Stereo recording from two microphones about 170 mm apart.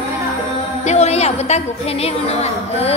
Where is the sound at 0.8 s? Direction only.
40° left (ahead or behind).